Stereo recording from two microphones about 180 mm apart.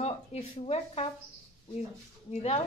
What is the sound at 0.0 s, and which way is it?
Speech, 35° left (ahead or behind).